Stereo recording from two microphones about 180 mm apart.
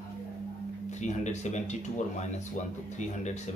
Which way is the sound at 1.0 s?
40° left (ahead or behind).